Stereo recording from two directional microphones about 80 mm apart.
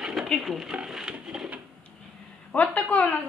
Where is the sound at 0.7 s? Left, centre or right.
Centre.